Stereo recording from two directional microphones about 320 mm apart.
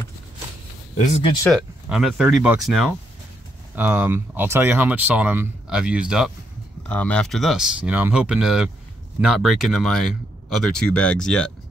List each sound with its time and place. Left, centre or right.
0.9 s speech: left
1.5 s speech: centre